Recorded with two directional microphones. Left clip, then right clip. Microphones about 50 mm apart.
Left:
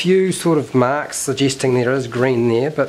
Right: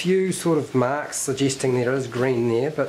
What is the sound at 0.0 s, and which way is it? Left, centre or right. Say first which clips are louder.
Speech: left 6 dB; left.